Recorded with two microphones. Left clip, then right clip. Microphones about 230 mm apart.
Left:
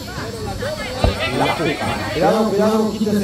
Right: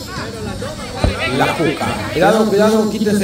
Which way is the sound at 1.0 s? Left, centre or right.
Centre.